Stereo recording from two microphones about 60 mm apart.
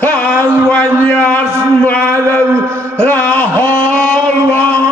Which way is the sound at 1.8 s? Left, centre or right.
Left.